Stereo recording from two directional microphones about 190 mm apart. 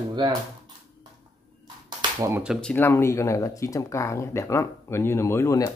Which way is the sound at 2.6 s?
10° left (ahead or behind).